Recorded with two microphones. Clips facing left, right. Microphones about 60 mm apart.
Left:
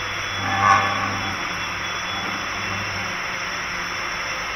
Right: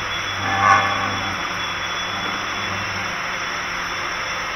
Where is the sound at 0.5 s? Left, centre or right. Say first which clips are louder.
Right 1 dB; right.